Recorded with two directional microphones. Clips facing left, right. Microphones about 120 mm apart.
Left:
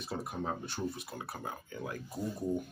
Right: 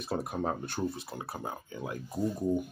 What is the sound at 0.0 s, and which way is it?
Speech, 55° right (ahead or behind).